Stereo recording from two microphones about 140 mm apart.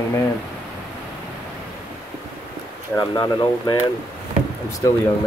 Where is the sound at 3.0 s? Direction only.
30° left (ahead or behind).